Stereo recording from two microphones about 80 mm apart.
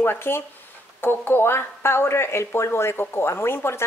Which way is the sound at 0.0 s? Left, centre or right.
Left.